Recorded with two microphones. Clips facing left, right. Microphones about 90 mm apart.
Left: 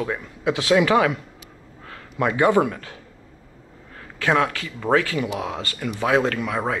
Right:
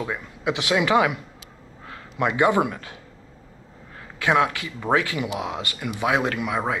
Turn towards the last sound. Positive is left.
turn(degrees=-15)  # may be behind; listen again after turning